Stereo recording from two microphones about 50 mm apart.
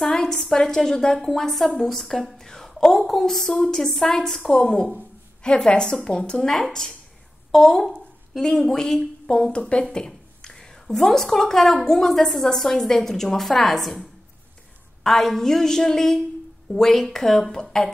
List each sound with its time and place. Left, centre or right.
0.1 s a woman's voice: centre
15.0 s a woman's voice: centre